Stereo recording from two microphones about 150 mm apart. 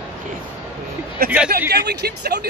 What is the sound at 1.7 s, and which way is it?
Speech, 90° right.